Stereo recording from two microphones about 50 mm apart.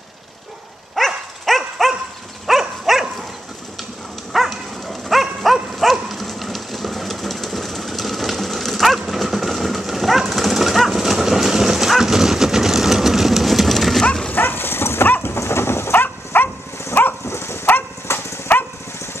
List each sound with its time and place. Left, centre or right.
0.9 s dog: centre
4.3 s dog: centre
14.3 s dog: left
15.0 s vehicle: left
15.3 s dog: left
17.3 s dog: left